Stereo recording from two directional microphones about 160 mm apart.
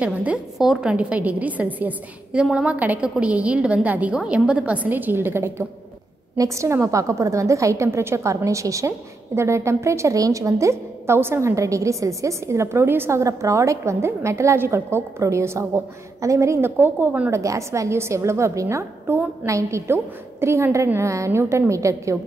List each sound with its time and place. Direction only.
0.0 s a woman's voice: 10° right (ahead or behind)